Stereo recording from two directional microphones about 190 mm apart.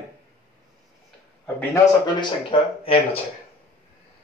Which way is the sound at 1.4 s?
10° left (ahead or behind).